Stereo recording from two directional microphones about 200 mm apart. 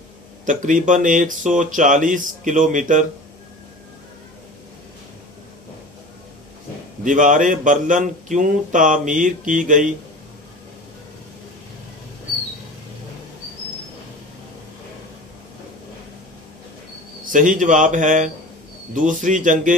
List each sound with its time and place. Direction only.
0.5 s speech: 40° right (ahead or behind)
7.1 s speech: 40° right (ahead or behind)
17.3 s speech: 40° right (ahead or behind)